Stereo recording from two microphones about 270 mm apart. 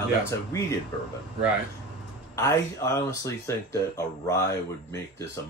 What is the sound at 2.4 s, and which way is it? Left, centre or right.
Speech, centre.